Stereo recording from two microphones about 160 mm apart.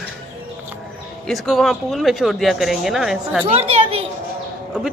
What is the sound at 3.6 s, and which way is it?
Speech, 40° right (ahead or behind).